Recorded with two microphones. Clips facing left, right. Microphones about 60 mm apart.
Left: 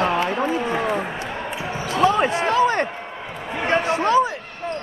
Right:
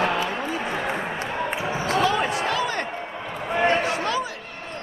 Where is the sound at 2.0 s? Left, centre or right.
Left.